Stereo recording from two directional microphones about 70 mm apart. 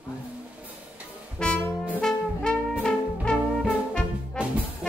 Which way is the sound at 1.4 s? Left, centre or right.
Centre.